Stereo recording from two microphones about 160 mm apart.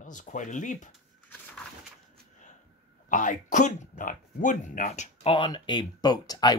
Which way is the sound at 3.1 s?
55° left (ahead or behind).